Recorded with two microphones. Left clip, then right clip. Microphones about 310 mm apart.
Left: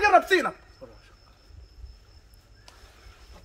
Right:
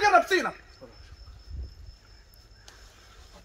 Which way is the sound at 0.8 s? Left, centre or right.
Centre.